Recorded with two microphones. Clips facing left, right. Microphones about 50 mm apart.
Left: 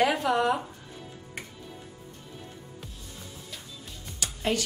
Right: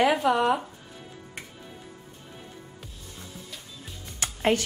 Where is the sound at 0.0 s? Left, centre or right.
Centre.